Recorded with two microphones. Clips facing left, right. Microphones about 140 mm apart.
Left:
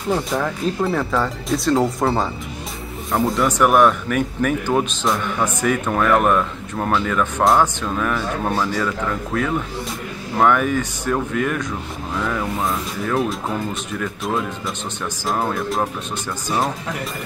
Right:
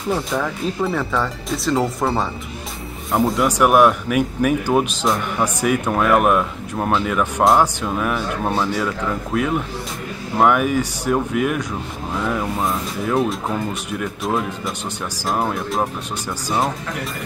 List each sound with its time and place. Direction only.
0.1 s a man's voice: centre (ahead or behind)
13.0 s speech: centre (ahead or behind)
15.2 s speech: 5° right (ahead or behind)